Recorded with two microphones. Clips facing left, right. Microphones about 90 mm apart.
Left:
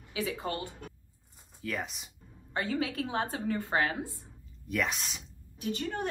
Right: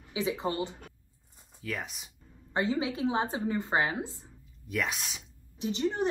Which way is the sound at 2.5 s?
20° right (ahead or behind).